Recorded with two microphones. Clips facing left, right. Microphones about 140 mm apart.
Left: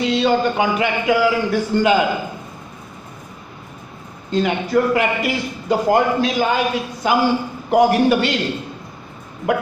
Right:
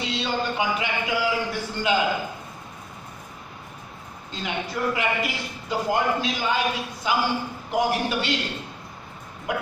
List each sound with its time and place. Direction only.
0.0 s a man's voice: 55° left (ahead or behind)
4.3 s a man's voice: 55° left (ahead or behind)